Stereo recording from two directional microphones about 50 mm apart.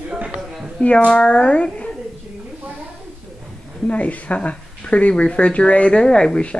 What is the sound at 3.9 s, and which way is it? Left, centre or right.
Speech, left.